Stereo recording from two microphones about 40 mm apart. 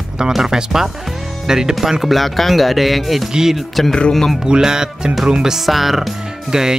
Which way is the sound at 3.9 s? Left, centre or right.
Left.